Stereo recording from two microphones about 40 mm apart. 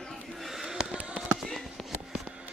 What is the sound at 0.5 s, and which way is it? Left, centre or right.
Fireworks, centre.